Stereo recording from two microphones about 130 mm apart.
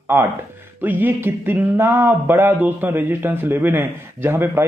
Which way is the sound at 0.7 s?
15° right (ahead or behind).